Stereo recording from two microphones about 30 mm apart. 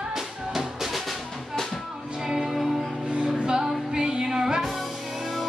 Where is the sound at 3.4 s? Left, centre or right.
Right.